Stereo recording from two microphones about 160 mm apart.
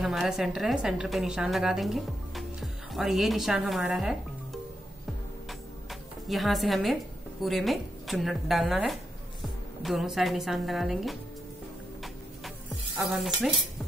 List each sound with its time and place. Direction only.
0.0 s a woman's voice: centre (ahead or behind)
5.5 s music: centre (ahead or behind)
7.4 s a woman's voice: centre (ahead or behind)
12.0 s music: centre (ahead or behind)